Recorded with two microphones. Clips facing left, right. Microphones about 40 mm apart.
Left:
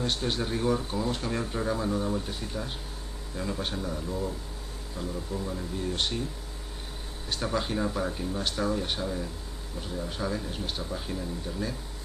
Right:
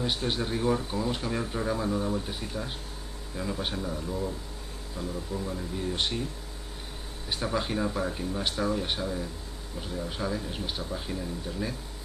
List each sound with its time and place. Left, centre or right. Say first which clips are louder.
0.0 s speech: even; centre
5.9 s speech: even; centre
7.4 s speech: even; centre